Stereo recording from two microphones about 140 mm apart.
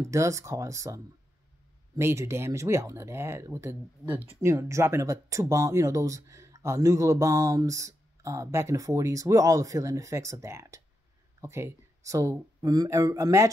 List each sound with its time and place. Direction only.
0.0 s speech: 20° right (ahead or behind)